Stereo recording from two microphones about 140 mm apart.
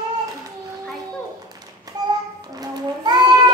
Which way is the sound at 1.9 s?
30° right (ahead or behind).